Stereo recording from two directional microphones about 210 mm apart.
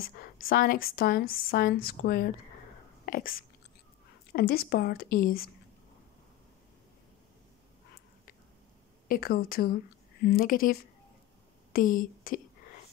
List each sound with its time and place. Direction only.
0.1 s speech: 45° left (ahead or behind)
9.0 s speech: 45° left (ahead or behind)